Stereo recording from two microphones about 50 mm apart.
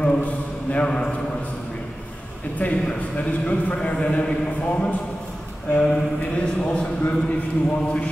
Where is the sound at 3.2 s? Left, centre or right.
Left.